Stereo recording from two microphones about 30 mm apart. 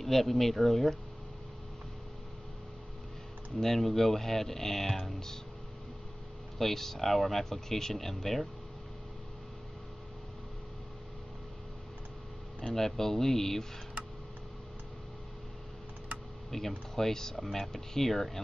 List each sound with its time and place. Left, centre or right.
0.0 s speech: centre
3.5 s speech: centre
6.6 s speech: centre
12.6 s speech: centre
16.4 s speech: centre
17.4 s speech: centre